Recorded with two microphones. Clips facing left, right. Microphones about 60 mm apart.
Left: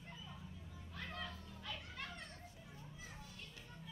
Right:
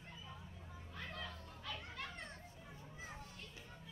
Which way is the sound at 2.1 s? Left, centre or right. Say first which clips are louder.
Right 1 dB; right.